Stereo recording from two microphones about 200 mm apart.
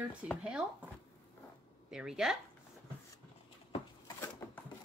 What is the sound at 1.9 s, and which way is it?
Speech, 5° right (ahead or behind).